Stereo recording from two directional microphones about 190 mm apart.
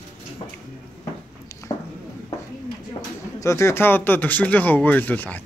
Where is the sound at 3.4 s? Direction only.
15° left (ahead or behind).